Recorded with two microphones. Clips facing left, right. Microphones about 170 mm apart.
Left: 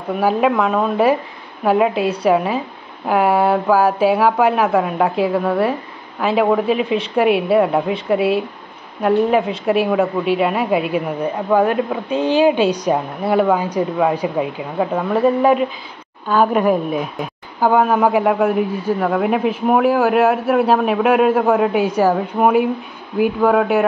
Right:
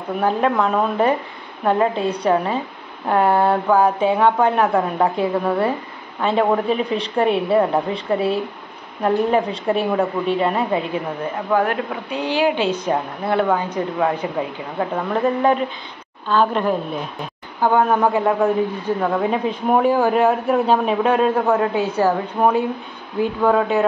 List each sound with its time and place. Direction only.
0.2 s a woman's voice: 5° left (ahead or behind)